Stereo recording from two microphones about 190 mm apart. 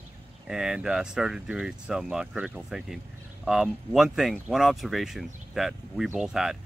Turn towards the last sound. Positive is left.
turn(degrees=-5)  # may be behind; listen again after turning